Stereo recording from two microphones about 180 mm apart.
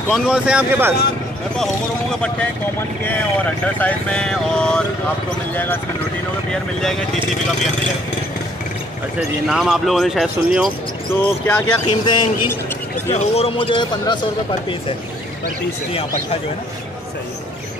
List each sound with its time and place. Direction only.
0.1 s speech: 5° right (ahead or behind)
1.6 s speech: 5° left (ahead or behind)
9.5 s speech: centre (ahead or behind)
11.1 s speech: 15° left (ahead or behind)
11.9 s speech: 25° left (ahead or behind)
13.1 s a man's voice: 35° left (ahead or behind)
15.9 s a man's voice: 30° left (ahead or behind)